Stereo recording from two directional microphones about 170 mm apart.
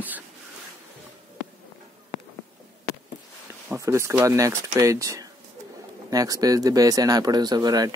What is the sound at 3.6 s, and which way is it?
Speech, 15° right (ahead or behind).